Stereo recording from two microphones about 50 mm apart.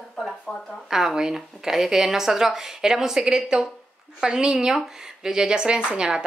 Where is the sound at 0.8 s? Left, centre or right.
Centre.